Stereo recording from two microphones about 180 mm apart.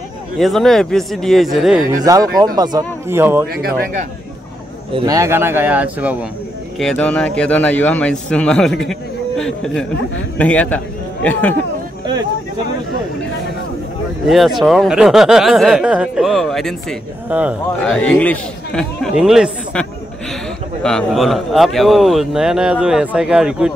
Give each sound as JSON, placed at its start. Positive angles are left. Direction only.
{"t": 0.4, "sound": "speech", "side_deg": 0}
{"t": 2.0, "sound": "speech", "side_deg": -20}
{"t": 3.5, "sound": "speech", "side_deg": -55}
{"t": 4.9, "sound": "speech", "side_deg": -20}
{"t": 6.8, "sound": "a man's voice", "side_deg": 5}
{"t": 14.2, "sound": "speech", "side_deg": 0}
{"t": 17.9, "sound": "speech", "side_deg": 5}